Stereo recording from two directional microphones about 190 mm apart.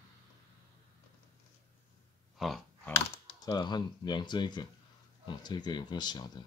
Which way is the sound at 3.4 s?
20° left (ahead or behind).